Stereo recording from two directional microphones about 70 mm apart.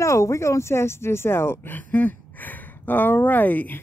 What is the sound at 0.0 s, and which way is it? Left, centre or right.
Speech, left.